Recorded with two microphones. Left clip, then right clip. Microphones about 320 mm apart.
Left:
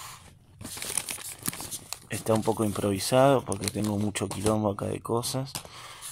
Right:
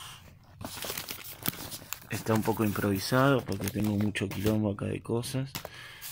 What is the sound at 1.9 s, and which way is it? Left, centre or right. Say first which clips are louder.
Speech: left 3 dB; centre.